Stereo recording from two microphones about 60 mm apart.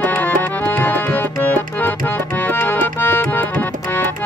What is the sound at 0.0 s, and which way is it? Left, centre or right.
Tabla, left.